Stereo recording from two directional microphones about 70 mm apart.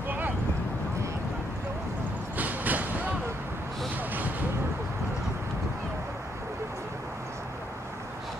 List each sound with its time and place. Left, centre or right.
2.3 s vehicle: right